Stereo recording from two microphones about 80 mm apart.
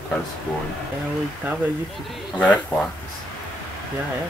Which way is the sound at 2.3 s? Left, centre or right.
Centre.